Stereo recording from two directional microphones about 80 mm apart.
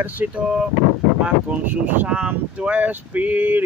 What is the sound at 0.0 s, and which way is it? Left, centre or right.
Speech, right.